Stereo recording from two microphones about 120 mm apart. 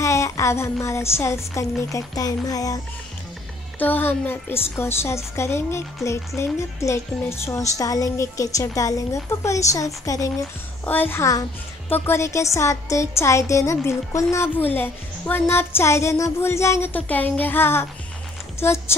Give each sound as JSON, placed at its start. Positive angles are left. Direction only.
{"t": 0.0, "sound": "speech", "side_deg": 25}
{"t": 3.8, "sound": "speech", "side_deg": 15}
{"t": 10.9, "sound": "speech", "side_deg": 15}